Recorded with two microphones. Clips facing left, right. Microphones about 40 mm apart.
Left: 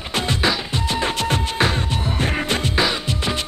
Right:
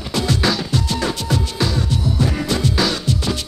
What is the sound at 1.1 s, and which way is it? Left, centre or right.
Music, left.